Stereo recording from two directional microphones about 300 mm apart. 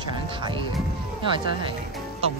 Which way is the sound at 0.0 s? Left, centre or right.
Centre.